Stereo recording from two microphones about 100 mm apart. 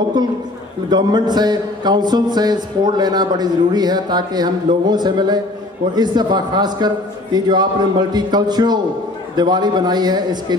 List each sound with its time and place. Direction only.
0.8 s a man's voice: 45° right (ahead or behind)